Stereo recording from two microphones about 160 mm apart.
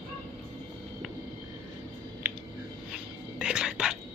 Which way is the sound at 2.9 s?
5° right (ahead or behind).